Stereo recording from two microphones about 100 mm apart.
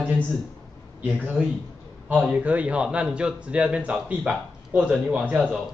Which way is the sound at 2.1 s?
15° right (ahead or behind).